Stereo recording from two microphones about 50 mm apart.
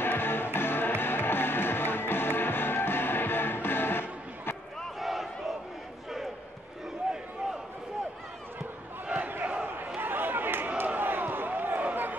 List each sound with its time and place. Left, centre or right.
0.0 s music: left
4.9 s battle cry: centre
9.2 s battle cry: right
9.9 s a sound: right
11.8 s run: right